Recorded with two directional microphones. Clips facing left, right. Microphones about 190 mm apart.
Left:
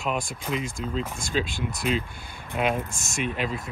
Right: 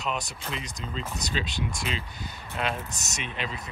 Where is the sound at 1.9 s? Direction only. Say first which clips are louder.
Left 12 dB; 5° left (ahead or behind).